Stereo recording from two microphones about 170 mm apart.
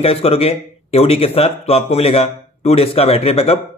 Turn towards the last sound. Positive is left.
turn(degrees=35)  # may be behind; listen again after turning